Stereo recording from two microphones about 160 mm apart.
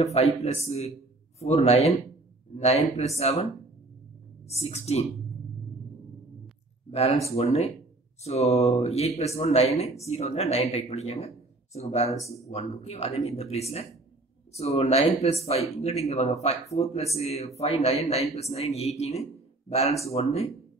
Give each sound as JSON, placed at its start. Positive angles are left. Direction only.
{"t": 0.0, "sound": "speech", "side_deg": 40}
{"t": 4.6, "sound": "speech", "side_deg": 40}
{"t": 6.9, "sound": "speech", "side_deg": 40}